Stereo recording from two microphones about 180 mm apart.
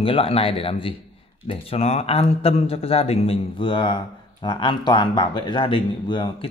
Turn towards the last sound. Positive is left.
turn(degrees=25)  # may be behind; listen again after turning